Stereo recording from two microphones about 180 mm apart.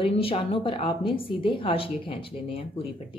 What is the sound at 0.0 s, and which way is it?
A woman's voice, 30° left (ahead or behind).